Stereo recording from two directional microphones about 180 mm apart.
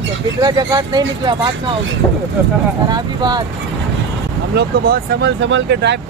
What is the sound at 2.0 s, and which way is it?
Speech, 20° left (ahead or behind).